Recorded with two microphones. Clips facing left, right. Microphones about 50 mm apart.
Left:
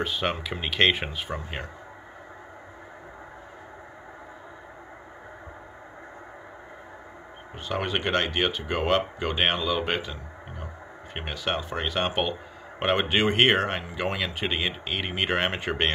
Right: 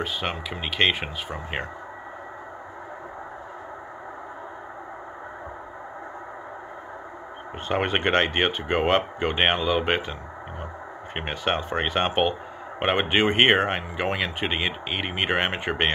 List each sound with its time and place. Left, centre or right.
0.0 s speech: centre
7.6 s speech: right
11.1 s speech: right